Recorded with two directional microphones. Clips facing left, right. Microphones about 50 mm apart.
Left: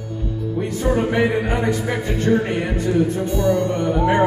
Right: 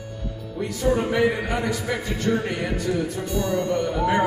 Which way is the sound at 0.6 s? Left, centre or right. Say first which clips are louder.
Left 2 dB; left.